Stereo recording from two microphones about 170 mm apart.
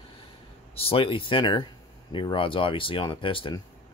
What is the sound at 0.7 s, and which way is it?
Speech, 35° left (ahead or behind).